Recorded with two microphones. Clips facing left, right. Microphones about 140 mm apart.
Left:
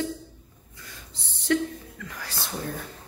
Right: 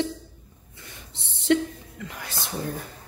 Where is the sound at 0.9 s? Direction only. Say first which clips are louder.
Even; 25° right (ahead or behind).